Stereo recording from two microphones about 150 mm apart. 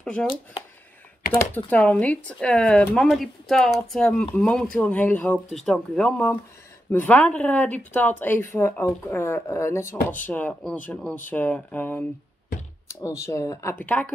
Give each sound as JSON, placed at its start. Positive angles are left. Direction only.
{"t": 0.0, "sound": "speech", "side_deg": 5}
{"t": 1.5, "sound": "speech", "side_deg": 10}